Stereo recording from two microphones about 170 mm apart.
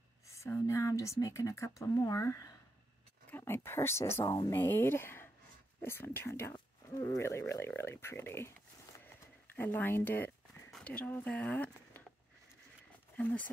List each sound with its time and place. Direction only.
0.3 s speech: 15° left (ahead or behind)
4.6 s speech: 15° left (ahead or behind)
9.6 s speech: 10° left (ahead or behind)
13.1 s speech: 10° left (ahead or behind)